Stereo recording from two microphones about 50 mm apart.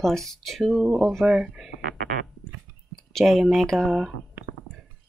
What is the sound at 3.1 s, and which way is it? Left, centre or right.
Speech, centre.